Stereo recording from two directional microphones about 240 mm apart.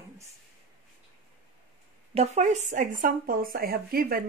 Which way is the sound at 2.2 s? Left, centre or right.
Right.